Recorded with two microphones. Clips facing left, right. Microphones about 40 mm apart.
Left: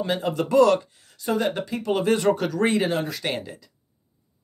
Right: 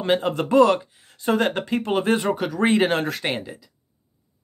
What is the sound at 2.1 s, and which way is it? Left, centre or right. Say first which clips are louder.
Speech: left 1 dB; centre.